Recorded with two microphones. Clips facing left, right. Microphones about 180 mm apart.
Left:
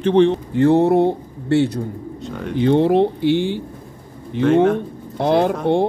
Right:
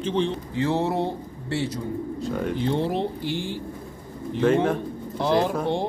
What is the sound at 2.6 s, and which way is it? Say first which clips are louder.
Speech: left 13 dB; 65° left (ahead or behind).